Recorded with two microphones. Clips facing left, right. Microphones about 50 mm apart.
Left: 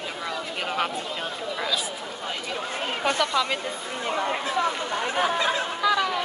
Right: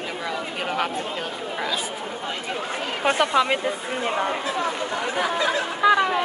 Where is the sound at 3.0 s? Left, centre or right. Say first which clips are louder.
Right 5 dB; right.